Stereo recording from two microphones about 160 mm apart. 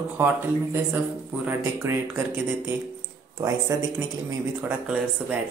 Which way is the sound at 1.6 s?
15° right (ahead or behind).